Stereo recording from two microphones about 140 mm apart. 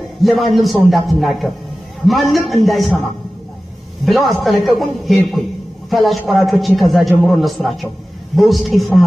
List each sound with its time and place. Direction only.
0.2 s a man's voice: centre (ahead or behind)
4.0 s a man's voice: centre (ahead or behind)